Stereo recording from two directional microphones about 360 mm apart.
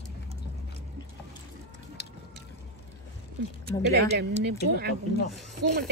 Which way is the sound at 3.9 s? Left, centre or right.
Right.